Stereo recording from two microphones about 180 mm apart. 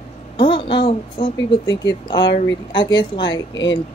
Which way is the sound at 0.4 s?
30° left (ahead or behind).